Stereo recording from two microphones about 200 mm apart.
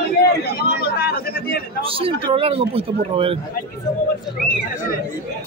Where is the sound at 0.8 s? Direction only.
50° left (ahead or behind).